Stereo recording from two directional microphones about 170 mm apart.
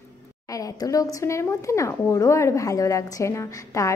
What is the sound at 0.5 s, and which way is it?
A woman's voice, 20° left (ahead or behind).